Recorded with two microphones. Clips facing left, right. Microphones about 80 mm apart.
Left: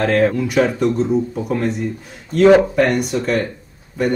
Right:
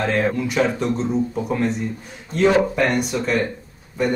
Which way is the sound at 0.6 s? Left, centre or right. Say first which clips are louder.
Left 6 dB; centre.